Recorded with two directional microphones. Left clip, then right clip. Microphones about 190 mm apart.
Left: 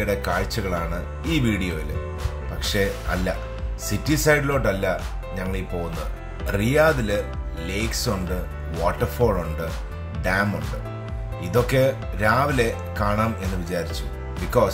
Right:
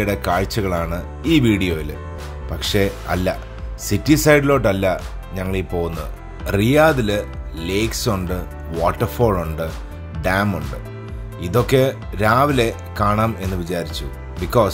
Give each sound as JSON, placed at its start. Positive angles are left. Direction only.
{"t": 0.0, "sound": "speech", "side_deg": -45}